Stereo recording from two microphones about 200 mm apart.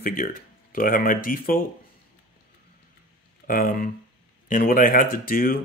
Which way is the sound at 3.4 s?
45° left (ahead or behind).